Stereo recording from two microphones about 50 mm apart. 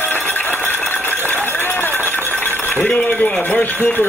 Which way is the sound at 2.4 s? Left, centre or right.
Left.